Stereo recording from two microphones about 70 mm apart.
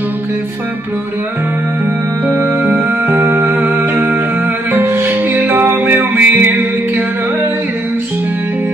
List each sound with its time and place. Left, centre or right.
2.2 s music: right